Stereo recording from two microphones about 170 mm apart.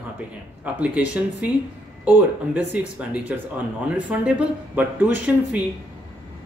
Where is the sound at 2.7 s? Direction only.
10° right (ahead or behind).